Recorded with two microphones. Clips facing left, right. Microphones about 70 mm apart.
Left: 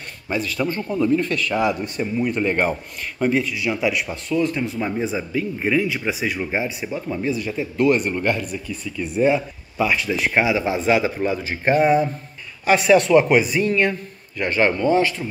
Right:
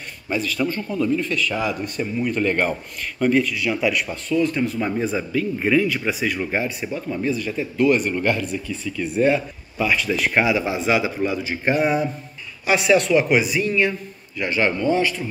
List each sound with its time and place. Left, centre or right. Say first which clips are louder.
0.3 s a man's voice: even; left
1.5 s a man's voice: left 3 dB; left
4.7 s a man's voice: right 1 dB; centre
9.8 s a man's voice: even; left
14.4 s a man's voice: left 2 dB; left